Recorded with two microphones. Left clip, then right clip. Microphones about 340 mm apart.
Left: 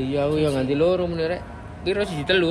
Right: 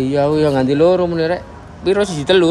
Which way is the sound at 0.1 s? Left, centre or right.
Right.